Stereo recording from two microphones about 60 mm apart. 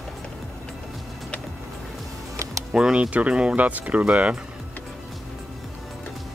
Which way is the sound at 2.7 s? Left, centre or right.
Centre.